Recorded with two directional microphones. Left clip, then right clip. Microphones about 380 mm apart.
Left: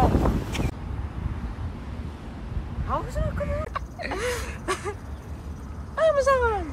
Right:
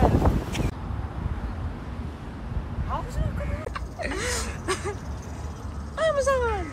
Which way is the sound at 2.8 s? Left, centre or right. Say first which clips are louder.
Left 4 dB; centre.